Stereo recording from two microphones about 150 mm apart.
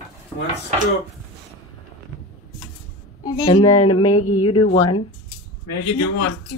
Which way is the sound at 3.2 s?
25° left (ahead or behind).